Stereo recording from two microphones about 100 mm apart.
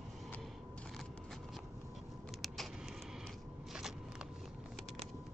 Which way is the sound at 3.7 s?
5° right (ahead or behind).